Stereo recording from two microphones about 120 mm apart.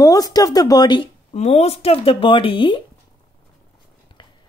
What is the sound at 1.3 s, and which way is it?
Speech, 65° left (ahead or behind).